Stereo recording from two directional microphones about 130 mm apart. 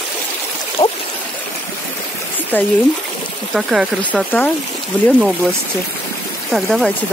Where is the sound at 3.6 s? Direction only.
5° right (ahead or behind).